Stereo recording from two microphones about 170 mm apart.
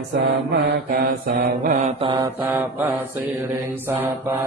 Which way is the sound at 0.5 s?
60° right (ahead or behind).